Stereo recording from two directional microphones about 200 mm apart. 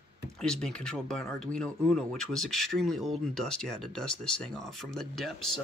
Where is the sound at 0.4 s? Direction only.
5° left (ahead or behind).